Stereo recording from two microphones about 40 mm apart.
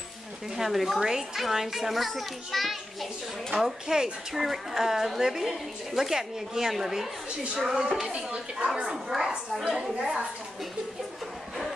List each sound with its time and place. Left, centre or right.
0.6 s a child's voice: centre
3.8 s a woman's voice: centre
8.8 s a woman's voice: centre
9.8 s a woman's voice: centre